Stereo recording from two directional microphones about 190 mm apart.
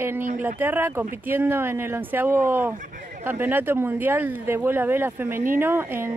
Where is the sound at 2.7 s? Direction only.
45° right (ahead or behind).